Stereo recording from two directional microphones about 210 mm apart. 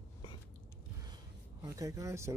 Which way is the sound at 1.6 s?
15° right (ahead or behind).